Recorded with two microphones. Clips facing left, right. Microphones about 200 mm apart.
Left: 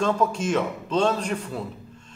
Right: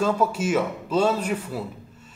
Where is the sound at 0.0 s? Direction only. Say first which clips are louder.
Right 1 dB; 5° right (ahead or behind).